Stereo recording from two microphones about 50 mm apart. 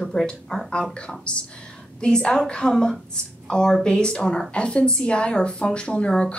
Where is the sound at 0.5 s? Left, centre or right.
Centre.